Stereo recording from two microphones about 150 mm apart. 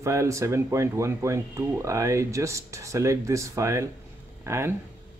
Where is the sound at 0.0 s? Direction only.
20° right (ahead or behind).